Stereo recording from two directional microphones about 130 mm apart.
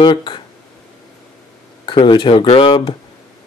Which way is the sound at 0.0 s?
35° left (ahead or behind).